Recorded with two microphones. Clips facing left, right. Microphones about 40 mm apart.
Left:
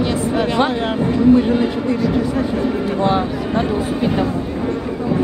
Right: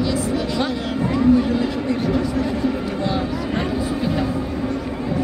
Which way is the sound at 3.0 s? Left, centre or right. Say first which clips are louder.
Left 5 dB; left.